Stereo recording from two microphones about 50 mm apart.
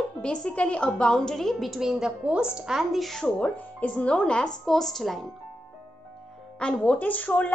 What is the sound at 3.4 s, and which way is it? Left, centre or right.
Speech, left.